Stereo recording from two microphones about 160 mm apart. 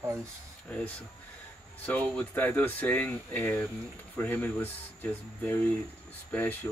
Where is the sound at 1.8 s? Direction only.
10° left (ahead or behind).